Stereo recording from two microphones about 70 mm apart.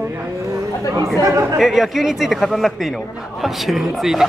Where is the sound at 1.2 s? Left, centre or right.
Right.